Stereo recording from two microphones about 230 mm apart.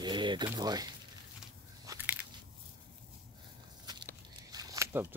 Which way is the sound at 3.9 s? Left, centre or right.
Centre.